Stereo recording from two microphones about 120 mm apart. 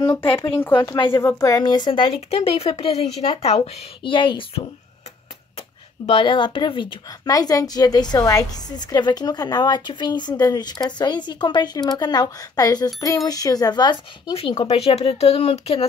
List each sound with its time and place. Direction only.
0.1 s a woman's voice: 45° left (ahead or behind)
1.2 s a woman's voice: 25° left (ahead or behind); by 2.0 s 40° left (ahead or behind)
2.3 s a woman's voice: 55° left (ahead or behind)
6.0 s a woman's voice: 45° left (ahead or behind)
7.1 s a woman's voice: 30° left (ahead or behind)
14.9 s speech: 55° left (ahead or behind)